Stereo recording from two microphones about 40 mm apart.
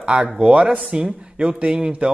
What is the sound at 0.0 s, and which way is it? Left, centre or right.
A man's voice, right.